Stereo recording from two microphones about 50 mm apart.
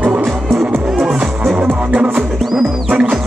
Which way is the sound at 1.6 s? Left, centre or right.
Right.